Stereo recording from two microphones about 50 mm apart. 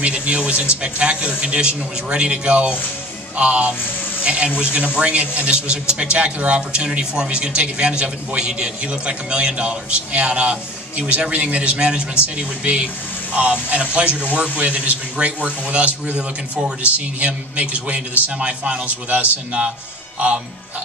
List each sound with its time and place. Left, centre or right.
0.0 s a man's voice: right